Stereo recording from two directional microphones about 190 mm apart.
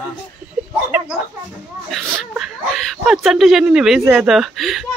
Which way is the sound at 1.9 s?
5° right (ahead or behind).